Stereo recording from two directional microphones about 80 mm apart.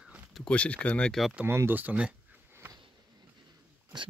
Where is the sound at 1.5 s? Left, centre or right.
Right.